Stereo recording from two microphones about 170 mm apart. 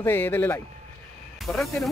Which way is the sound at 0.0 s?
10° left (ahead or behind).